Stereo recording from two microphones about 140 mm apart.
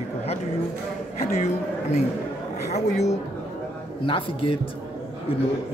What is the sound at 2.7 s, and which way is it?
Speech, 50° left (ahead or behind).